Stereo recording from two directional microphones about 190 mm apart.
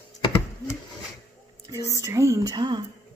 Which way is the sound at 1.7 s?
15° right (ahead or behind).